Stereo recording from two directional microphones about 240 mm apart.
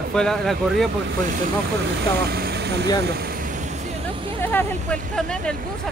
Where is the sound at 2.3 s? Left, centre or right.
Right.